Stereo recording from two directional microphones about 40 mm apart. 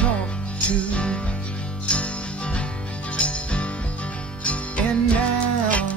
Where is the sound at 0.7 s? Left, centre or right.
Left.